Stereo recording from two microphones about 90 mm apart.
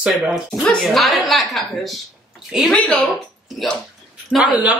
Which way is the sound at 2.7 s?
10° left (ahead or behind).